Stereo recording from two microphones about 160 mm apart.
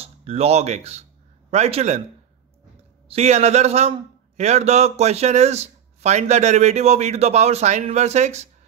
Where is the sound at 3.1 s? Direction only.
45° right (ahead or behind).